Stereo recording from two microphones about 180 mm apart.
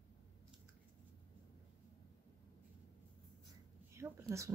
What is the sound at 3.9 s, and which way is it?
Speech, 15° right (ahead or behind).